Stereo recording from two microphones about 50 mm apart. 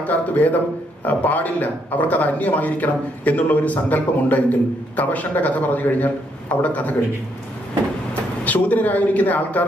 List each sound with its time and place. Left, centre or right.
0.0 s a man's voice: left
8.5 s a man's voice: left